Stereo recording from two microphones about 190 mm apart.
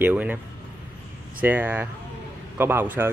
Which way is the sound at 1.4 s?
10° right (ahead or behind).